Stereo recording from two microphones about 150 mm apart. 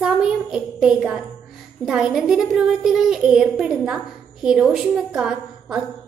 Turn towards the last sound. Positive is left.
turn(degrees=-5)  # may be behind; listen again after turning